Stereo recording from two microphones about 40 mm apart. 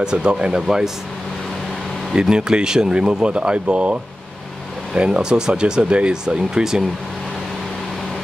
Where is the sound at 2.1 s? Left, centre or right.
Centre.